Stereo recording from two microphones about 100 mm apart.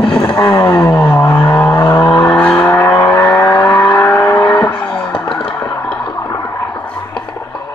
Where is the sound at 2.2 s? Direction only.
10° left (ahead or behind).